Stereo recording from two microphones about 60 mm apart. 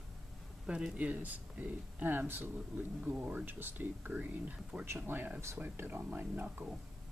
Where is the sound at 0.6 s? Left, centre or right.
Centre.